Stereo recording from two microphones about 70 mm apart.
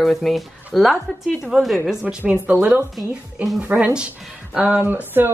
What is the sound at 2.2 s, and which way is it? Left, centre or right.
Speech, right.